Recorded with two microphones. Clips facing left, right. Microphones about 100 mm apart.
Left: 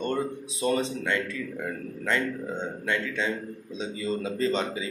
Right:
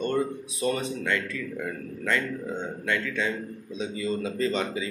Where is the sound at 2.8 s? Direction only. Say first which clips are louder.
Right 1 dB; 25° left (ahead or behind).